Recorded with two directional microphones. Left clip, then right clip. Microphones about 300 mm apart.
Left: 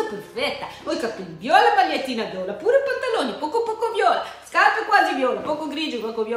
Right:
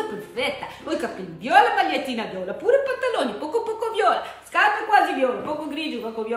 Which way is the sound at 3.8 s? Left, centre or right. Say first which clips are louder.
Left 1 dB; centre.